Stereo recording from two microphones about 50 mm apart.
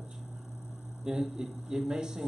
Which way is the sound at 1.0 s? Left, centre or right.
Centre.